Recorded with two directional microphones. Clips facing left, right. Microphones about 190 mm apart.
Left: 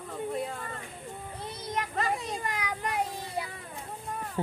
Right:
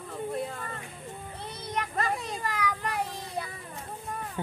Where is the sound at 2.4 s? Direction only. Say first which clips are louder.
Right 2 dB; 20° left (ahead or behind).